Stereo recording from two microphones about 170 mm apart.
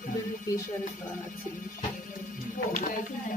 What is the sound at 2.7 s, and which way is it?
Music, 55° left (ahead or behind).